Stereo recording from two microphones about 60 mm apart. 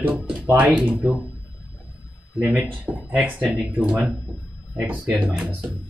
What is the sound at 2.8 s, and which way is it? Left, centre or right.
Speech, right.